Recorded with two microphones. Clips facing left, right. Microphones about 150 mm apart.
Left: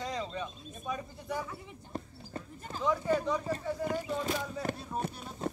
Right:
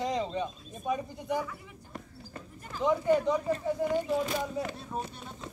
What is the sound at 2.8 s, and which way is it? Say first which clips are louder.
Speech: right 4 dB; 20° right (ahead or behind).